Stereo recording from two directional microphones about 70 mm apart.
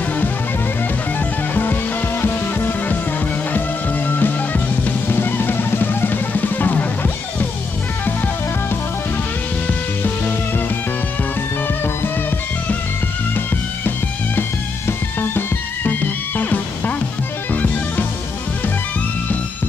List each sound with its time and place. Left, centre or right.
1.5 s music: left
4.1 s music: left
11.6 s music: left
14.9 s music: left